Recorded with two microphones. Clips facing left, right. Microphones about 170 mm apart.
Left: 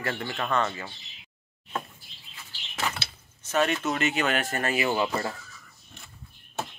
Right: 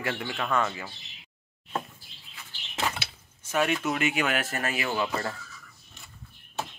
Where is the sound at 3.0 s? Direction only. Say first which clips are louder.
Even; 10° right (ahead or behind).